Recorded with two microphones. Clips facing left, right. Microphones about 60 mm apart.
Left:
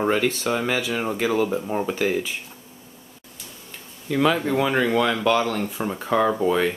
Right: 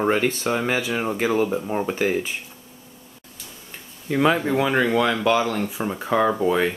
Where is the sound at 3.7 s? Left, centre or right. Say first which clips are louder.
Right 1 dB; centre.